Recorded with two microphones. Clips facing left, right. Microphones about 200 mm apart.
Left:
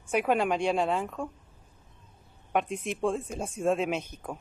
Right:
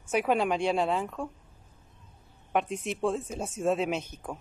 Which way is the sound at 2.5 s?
5° left (ahead or behind).